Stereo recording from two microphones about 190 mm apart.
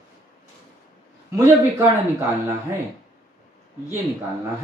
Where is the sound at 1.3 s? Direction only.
15° right (ahead or behind).